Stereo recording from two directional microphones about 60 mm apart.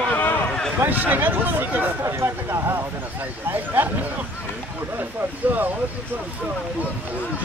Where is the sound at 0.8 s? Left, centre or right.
Right.